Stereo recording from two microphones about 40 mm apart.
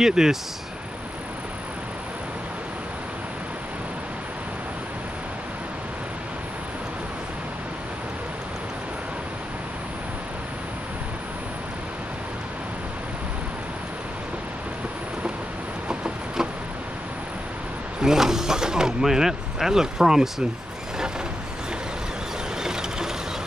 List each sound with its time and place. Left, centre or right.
0.0 s speech: centre
18.0 s vehicle: centre
22.6 s ratchet: centre